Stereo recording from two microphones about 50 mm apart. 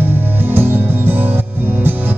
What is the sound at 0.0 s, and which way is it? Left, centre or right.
Music, right.